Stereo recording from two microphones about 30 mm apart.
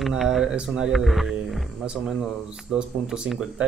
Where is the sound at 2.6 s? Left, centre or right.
Right.